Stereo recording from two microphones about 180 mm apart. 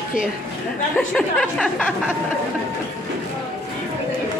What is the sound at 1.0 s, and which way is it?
Speech, 5° left (ahead or behind).